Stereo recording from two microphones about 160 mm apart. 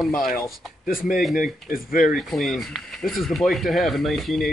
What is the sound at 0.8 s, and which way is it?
Speech, 60° left (ahead or behind).